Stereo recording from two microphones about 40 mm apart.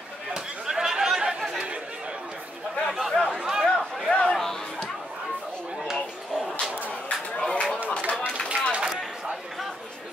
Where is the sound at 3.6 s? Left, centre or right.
Centre.